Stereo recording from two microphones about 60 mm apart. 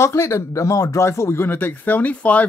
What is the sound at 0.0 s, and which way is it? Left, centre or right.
Speech, left.